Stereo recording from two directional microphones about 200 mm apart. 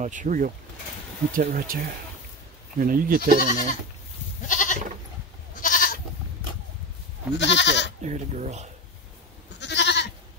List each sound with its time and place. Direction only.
0.0 s speech: 40° right (ahead or behind)
2.8 s speech: 45° right (ahead or behind)
4.5 s goat: 40° left (ahead or behind)
7.3 s goat: 60° left (ahead or behind)
8.0 s speech: 35° right (ahead or behind)
9.6 s goat: 60° left (ahead or behind)